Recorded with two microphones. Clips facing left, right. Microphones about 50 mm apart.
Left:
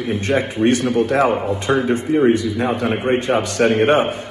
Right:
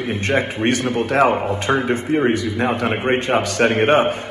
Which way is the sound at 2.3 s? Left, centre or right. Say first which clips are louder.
Left 1 dB; right.